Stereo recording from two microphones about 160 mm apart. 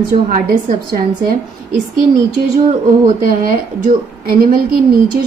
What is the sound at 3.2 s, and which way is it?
A woman's voice, 60° right (ahead or behind).